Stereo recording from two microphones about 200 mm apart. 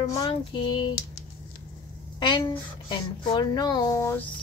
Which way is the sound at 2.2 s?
20° left (ahead or behind).